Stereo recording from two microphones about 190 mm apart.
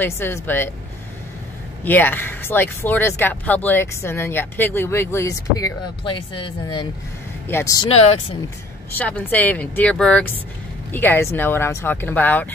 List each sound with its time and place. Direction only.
0.0 s speech: 10° left (ahead or behind)
1.9 s speech: 10° left (ahead or behind)
7.4 s speech: 15° left (ahead or behind)
7.9 s speech: 30° left (ahead or behind)
8.9 s speech: 10° left (ahead or behind)